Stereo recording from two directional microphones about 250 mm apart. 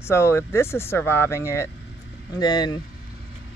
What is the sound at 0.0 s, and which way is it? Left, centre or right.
Speech, centre.